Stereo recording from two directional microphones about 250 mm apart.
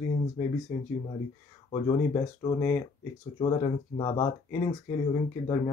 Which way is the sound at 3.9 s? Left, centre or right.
Centre.